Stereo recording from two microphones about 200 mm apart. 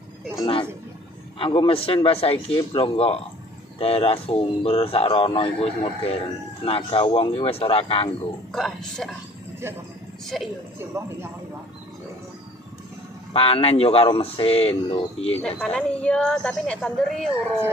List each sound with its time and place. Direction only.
0.4 s a sound: 25° left (ahead or behind)
1.4 s speech: 25° left (ahead or behind)
8.5 s a woman's voice: centre (ahead or behind)
10.2 s a woman's voice: centre (ahead or behind)
10.8 s speech: 10° right (ahead or behind)
13.3 s speech: 30° left (ahead or behind)
15.4 s a woman's voice: 5° left (ahead or behind)